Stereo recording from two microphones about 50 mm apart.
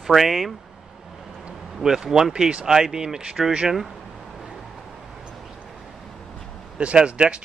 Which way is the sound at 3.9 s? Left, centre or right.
Centre.